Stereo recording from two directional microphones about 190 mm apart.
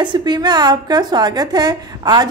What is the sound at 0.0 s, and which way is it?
A woman's voice, 25° right (ahead or behind).